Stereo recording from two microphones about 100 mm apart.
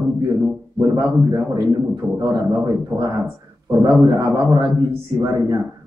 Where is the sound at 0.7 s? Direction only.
35° right (ahead or behind).